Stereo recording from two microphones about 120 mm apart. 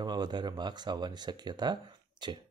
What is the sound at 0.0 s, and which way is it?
Speech, 35° right (ahead or behind).